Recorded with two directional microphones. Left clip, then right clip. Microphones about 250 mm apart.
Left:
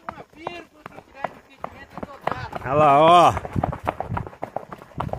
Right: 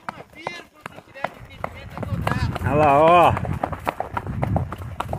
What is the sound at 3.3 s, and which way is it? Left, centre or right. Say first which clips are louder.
Run: even; right.